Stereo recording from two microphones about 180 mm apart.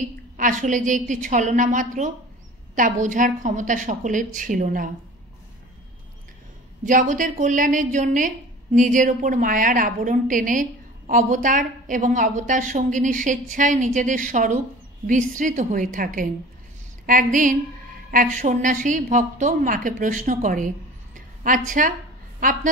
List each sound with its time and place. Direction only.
0.4 s a woman's voice: 45° right (ahead or behind)
6.8 s a woman's voice: 45° right (ahead or behind)